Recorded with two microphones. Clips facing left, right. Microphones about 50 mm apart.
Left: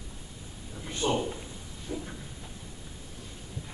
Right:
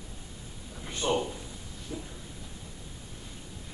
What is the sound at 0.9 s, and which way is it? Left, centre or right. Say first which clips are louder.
Drawer open or close: even; centre.